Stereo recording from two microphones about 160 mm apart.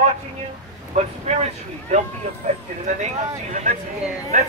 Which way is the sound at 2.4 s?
55° right (ahead or behind).